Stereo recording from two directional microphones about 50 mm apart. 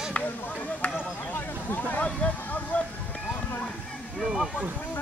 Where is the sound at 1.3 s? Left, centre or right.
Left.